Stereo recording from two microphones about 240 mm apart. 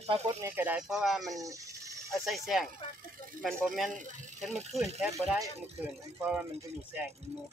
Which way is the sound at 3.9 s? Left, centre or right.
Right.